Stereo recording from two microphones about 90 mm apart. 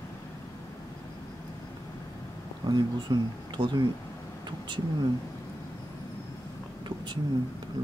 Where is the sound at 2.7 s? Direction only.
55° right (ahead or behind).